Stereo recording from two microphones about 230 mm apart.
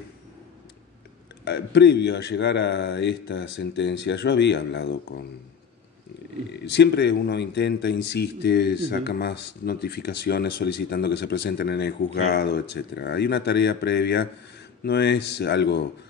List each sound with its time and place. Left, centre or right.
1.4 s speech: left
6.5 s speech: left